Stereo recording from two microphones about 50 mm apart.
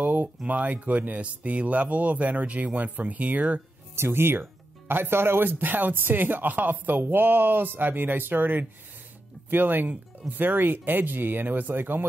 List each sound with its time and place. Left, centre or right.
0.0 s a sound: right
0.5 s speech: right
3.9 s speech: right